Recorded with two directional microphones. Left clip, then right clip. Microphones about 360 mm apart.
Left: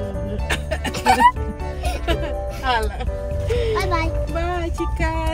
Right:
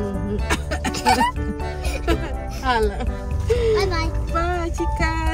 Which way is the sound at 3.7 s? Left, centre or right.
Centre.